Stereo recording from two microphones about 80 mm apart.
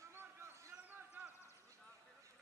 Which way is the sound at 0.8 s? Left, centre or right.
Right.